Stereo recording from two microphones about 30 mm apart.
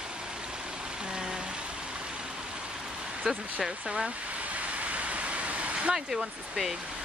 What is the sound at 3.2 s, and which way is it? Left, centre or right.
Speech, centre.